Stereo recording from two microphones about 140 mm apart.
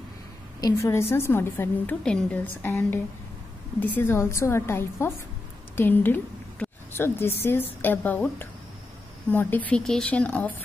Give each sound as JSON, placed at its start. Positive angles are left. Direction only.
{"t": 0.6, "sound": "a woman's voice", "side_deg": 25}